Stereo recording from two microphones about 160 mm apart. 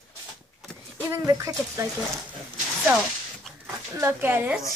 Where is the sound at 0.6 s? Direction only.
Centre (ahead or behind).